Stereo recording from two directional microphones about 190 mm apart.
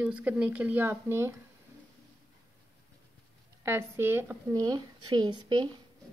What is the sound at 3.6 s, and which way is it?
Speech, 10° right (ahead or behind).